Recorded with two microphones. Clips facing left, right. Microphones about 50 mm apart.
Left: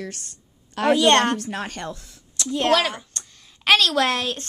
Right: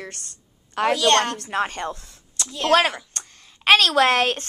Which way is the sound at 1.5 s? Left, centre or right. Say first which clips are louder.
Right 6 dB; right.